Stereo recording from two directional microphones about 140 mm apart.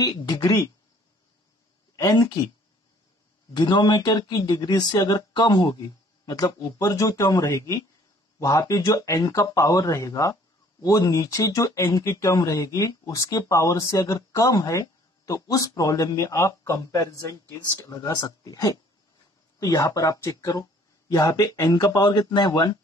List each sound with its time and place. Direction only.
0.0 s speech: 30° left (ahead or behind)
2.0 s speech: 25° left (ahead or behind)
3.5 s speech: 30° left (ahead or behind)